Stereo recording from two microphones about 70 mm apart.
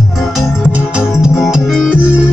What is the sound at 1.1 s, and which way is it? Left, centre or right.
Music, centre.